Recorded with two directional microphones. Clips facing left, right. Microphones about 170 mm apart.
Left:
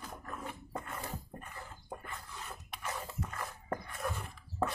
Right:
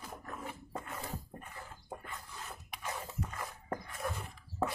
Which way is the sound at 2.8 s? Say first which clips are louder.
Even; 10° right (ahead or behind).